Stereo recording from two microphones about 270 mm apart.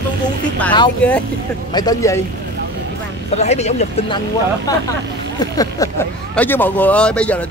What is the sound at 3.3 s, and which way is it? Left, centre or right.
Speech, left.